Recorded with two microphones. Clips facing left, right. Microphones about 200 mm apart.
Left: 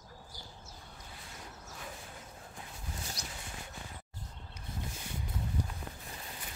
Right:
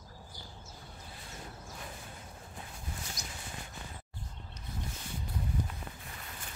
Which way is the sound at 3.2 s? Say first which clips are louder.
Even; 35° left (ahead or behind).